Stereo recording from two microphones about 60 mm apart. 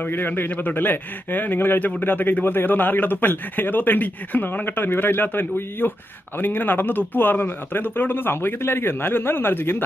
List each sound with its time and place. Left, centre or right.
0.0 s a man's voice: left